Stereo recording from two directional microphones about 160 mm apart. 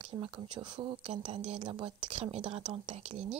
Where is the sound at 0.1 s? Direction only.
35° right (ahead or behind).